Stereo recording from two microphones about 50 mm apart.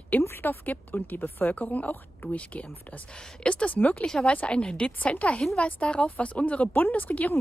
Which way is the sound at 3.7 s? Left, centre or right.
Left.